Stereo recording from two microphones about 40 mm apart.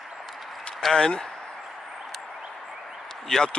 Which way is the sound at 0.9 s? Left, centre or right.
Left.